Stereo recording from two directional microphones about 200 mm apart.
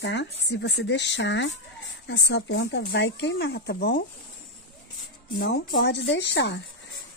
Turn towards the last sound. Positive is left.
turn(degrees=60)  # may be behind; listen again after turning